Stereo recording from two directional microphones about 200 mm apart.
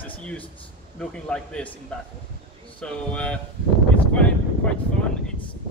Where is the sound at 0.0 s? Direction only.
5° left (ahead or behind).